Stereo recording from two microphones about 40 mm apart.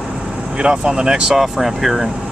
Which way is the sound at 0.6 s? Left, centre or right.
Right.